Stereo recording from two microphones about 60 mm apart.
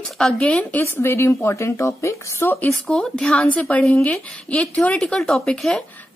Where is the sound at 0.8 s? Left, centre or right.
Left.